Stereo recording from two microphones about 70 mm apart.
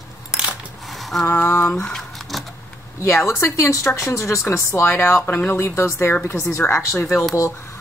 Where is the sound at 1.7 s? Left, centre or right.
Centre.